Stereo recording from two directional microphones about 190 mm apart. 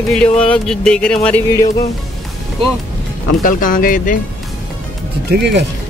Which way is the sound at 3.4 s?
45° left (ahead or behind).